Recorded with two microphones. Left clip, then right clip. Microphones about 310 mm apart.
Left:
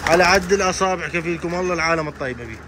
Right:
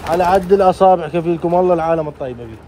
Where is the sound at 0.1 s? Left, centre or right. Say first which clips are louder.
Right 3 dB; centre.